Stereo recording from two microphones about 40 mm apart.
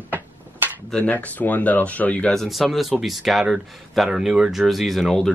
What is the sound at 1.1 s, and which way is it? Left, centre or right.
Speech, left.